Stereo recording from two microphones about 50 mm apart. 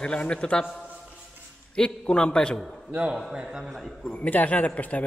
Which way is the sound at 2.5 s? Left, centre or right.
Centre.